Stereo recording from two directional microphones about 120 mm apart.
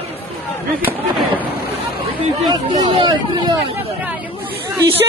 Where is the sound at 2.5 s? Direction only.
40° right (ahead or behind).